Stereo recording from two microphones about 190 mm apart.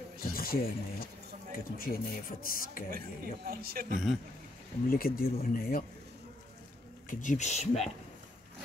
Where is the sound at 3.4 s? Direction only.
50° right (ahead or behind).